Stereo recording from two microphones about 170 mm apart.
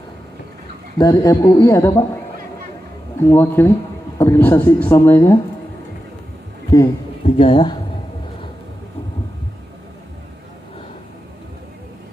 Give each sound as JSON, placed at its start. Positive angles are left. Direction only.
{"t": 0.9, "sound": "a man's voice", "side_deg": 20}
{"t": 3.2, "sound": "speech", "side_deg": 10}
{"t": 7.2, "sound": "a man's voice", "side_deg": 35}